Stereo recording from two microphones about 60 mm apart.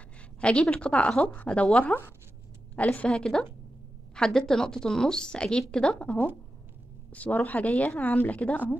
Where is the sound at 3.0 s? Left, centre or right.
Centre.